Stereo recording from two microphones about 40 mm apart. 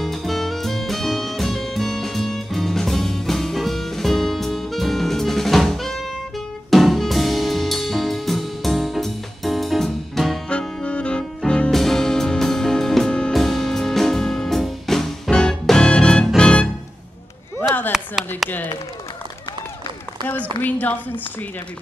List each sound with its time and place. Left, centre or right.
0.0 s music: centre
10.8 s music: left
11.7 s music: centre
15.8 s music: left
17.9 s a sound: centre
20.2 s a sound: left